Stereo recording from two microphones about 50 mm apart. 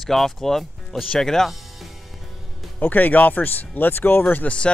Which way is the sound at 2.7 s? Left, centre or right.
Left.